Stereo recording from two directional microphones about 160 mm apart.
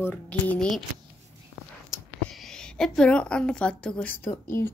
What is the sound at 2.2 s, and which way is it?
A woman's voice, centre (ahead or behind).